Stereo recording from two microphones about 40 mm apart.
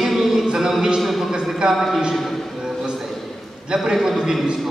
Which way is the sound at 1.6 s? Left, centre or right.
Centre.